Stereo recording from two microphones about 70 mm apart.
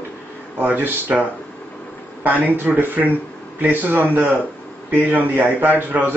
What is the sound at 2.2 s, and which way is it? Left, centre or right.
Speech, right.